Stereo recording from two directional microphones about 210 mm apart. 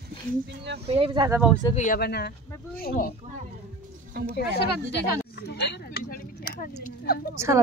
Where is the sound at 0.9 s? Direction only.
25° right (ahead or behind).